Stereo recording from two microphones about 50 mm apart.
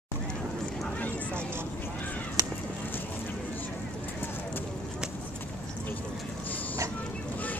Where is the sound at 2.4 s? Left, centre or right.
Right.